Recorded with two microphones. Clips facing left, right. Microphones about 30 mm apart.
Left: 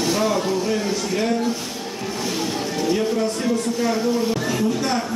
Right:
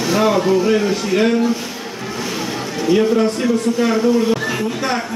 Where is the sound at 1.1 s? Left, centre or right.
Right.